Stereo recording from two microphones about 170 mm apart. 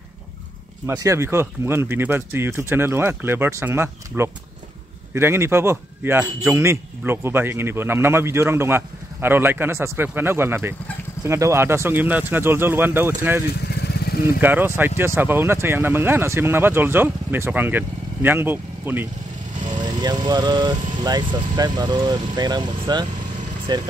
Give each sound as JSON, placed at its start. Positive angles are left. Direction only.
{"t": 0.8, "sound": "speech", "side_deg": -20}
{"t": 13.7, "sound": "vehicle", "side_deg": 75}
{"t": 14.4, "sound": "speech", "side_deg": -10}
{"t": 19.8, "sound": "speech", "side_deg": -25}